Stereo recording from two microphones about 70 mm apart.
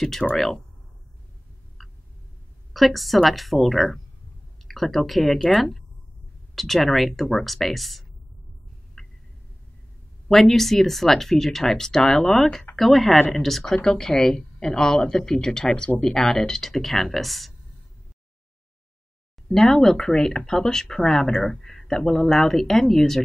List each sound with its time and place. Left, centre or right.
0.2 s a woman's voice: centre
2.7 s speech: centre
9.0 s a sound: centre
10.2 s a woman's voice: centre
19.5 s speech: centre